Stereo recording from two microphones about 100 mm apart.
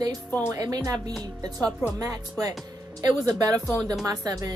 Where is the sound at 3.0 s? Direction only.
35° right (ahead or behind).